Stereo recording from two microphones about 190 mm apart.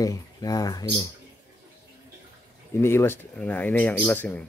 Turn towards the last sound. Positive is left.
turn(degrees=10)  # may be behind; listen again after turning